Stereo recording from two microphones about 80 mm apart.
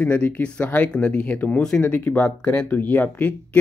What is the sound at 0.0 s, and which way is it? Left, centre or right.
Speech, centre.